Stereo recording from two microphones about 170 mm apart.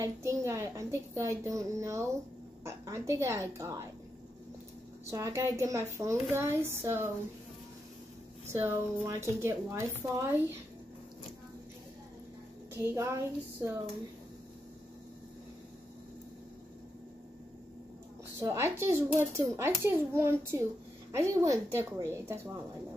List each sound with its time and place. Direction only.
0.0 s a child's voice: 15° right (ahead or behind)
5.1 s a child's voice: 15° right (ahead or behind)
8.5 s a child's voice: 15° right (ahead or behind)
12.7 s a child's voice: 15° right (ahead or behind)
18.4 s a child's voice: 20° right (ahead or behind)